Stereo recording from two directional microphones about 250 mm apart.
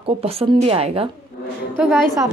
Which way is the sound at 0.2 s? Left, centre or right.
Right.